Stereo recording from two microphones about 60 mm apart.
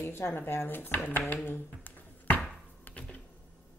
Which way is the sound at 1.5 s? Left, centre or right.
Left.